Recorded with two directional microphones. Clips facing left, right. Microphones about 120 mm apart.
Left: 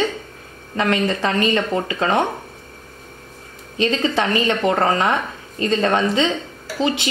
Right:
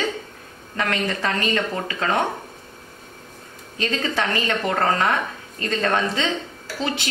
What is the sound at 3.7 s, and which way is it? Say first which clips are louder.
A woman's voice: left 5 dB; 20° left (ahead or behind).